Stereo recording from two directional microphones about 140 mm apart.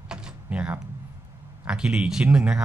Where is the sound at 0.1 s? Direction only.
10° right (ahead or behind).